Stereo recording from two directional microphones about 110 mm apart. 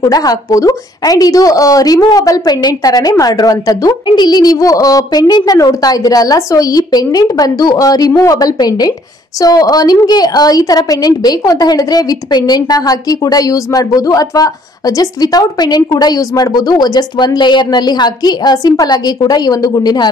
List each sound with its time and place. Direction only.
0.0 s a woman's voice: 35° left (ahead or behind)